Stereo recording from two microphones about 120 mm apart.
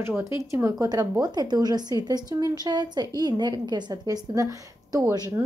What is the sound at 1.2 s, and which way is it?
A woman's voice, 35° right (ahead or behind).